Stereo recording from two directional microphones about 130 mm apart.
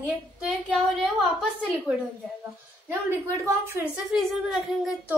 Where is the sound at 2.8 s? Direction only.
25° right (ahead or behind).